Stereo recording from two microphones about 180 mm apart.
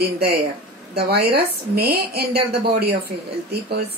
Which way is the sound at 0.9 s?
60° right (ahead or behind).